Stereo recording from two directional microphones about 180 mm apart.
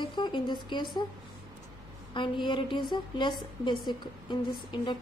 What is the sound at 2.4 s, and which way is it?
A woman's voice, 25° left (ahead or behind).